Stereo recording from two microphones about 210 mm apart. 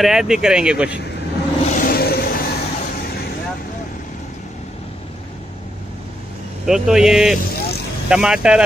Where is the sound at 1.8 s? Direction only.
45° left (ahead or behind).